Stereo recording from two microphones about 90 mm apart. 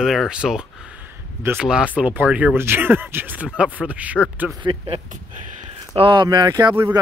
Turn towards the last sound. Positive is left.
turn(degrees=-50)  # may be behind; listen again after turning